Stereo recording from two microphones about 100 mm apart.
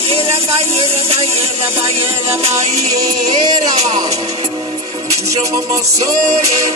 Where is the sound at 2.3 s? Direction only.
35° right (ahead or behind).